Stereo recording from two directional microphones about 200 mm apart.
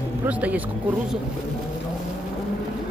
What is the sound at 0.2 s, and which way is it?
Speech, 5° right (ahead or behind).